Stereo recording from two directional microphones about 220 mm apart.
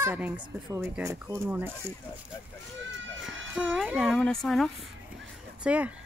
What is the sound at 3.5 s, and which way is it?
A woman's voice, centre (ahead or behind).